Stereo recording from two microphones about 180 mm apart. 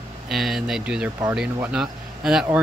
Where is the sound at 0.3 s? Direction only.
Centre (ahead or behind).